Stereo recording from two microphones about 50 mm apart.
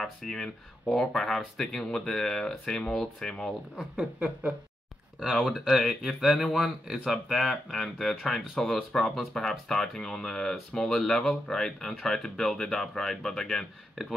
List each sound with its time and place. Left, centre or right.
0.0 s speech: centre
3.9 s speech: right
5.3 s speech: centre
8.6 s speech: centre
8.9 s speech: centre